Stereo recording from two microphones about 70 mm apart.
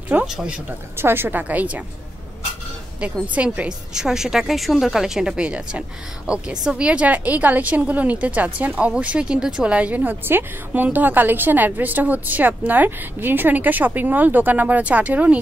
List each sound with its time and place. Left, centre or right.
0.3 s speech: centre
0.9 s a woman's voice: right
3.3 s a woman's voice: centre